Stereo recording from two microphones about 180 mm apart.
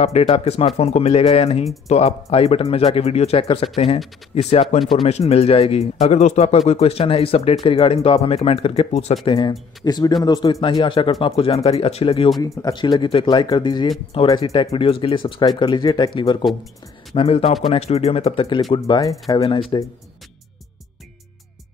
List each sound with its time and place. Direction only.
0.0 s speech: 35° left (ahead or behind)